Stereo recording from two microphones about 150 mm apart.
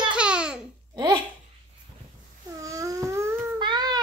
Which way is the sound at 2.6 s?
20° right (ahead or behind).